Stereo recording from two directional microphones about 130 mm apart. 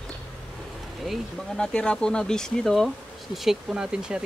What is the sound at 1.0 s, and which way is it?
Speech, centre (ahead or behind).